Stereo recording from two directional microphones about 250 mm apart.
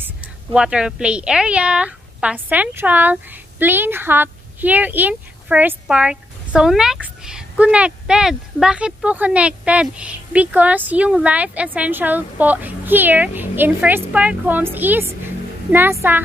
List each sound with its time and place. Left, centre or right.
0.0 s a woman's voice: centre